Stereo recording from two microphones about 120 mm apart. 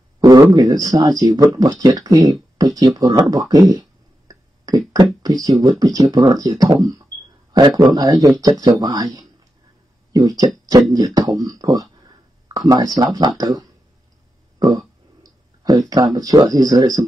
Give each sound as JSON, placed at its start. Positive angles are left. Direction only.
{"t": 0.2, "sound": "speech", "side_deg": -30}
{"t": 14.6, "sound": "a sound", "side_deg": -30}
{"t": 16.2, "sound": "speech", "side_deg": -30}